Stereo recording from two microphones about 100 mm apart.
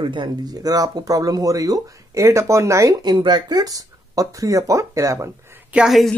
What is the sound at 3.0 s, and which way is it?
Speech, 45° right (ahead or behind).